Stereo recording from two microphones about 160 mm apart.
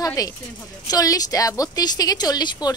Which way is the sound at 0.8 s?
25° left (ahead or behind).